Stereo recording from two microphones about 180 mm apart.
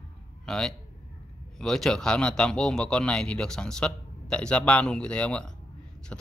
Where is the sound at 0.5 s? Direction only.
5° left (ahead or behind).